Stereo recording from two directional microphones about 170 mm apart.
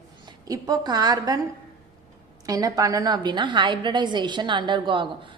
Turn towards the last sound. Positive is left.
turn(degrees=-30)  # may be behind; listen again after turning